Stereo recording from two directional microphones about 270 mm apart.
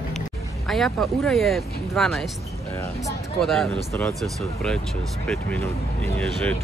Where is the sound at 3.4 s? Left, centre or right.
Centre.